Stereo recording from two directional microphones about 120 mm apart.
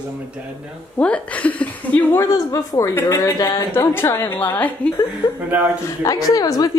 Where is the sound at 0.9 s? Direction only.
10° left (ahead or behind).